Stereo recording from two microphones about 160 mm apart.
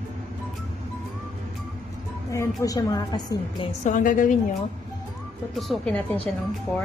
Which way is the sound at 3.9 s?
55° left (ahead or behind).